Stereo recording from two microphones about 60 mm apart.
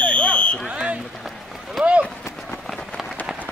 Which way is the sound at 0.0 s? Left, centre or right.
Left.